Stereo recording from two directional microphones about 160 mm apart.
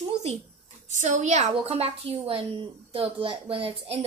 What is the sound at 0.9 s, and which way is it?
A woman's voice, 50° right (ahead or behind).